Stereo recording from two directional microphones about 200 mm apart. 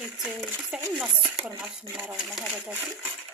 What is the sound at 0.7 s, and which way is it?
Speech, 5° right (ahead or behind).